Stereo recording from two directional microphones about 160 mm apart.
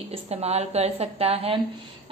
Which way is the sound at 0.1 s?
40° right (ahead or behind).